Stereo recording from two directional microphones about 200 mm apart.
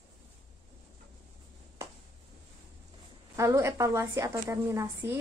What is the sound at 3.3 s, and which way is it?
A woman's voice, 15° right (ahead or behind).